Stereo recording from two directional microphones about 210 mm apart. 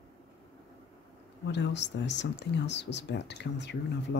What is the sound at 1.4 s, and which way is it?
Speech, 55° left (ahead or behind).